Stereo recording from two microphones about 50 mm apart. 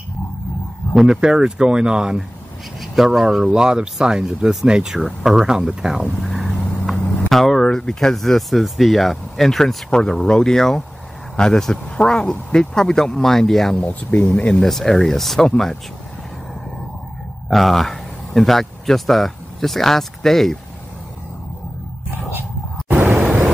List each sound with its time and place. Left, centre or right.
0.9 s speech: centre
6.2 s speech: centre
9.8 s speech: centre
13.7 s speech: left
14.6 s speech: centre
17.5 s speech: centre